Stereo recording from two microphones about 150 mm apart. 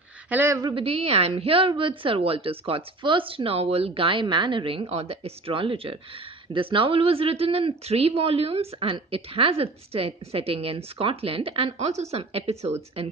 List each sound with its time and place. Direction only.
0.3 s a woman's voice: 10° right (ahead or behind)
0.6 s speech: 35° right (ahead or behind)